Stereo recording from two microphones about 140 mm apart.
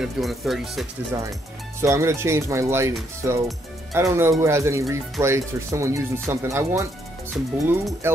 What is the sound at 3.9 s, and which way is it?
Speech, 20° right (ahead or behind).